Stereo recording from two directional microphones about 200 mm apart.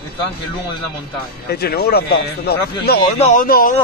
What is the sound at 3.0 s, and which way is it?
Speech, 35° left (ahead or behind).